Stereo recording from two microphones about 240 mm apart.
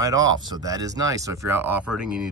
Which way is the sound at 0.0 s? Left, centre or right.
Centre.